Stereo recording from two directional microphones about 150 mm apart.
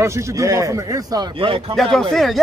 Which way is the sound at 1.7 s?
Centre (ahead or behind).